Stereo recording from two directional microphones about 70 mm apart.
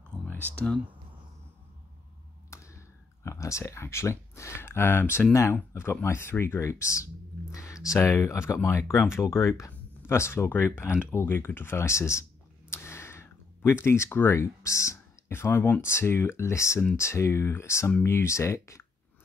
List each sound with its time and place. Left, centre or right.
0.4 s speech: right
2.5 s a sound: left
3.3 s speech: left
5.3 s speech: left
11.1 s a sound: left
13.8 s speech: left